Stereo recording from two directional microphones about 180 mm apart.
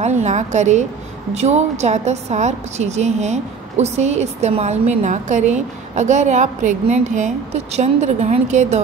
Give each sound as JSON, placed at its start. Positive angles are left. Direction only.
{"t": 0.0, "sound": "a woman's voice", "side_deg": -40}